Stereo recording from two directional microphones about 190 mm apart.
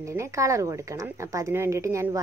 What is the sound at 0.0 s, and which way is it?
A woman's voice, 15° right (ahead or behind).